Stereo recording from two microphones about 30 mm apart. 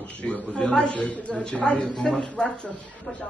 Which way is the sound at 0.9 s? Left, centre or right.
Left.